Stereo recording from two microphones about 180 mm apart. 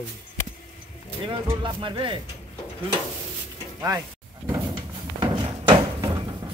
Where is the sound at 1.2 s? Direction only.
25° right (ahead or behind).